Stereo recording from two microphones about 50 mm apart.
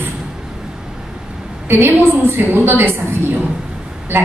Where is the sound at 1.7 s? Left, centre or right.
Right.